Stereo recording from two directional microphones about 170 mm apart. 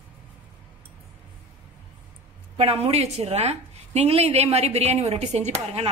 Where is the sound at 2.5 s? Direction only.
35° right (ahead or behind).